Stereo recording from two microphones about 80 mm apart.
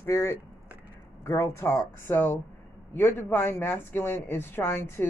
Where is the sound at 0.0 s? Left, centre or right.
Left.